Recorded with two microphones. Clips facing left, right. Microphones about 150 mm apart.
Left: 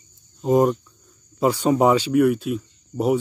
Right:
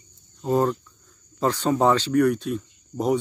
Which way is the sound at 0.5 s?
15° left (ahead or behind).